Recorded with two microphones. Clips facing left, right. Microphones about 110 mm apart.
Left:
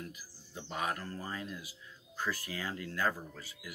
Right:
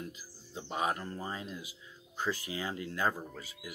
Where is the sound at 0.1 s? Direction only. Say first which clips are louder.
Right 2 dB; 20° right (ahead or behind).